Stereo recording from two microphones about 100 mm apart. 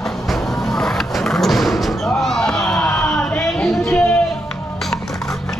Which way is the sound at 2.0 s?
5° left (ahead or behind).